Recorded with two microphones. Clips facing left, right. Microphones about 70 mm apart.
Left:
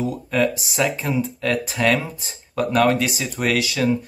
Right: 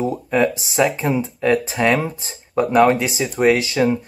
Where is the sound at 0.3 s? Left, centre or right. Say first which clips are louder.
Right 2 dB; right.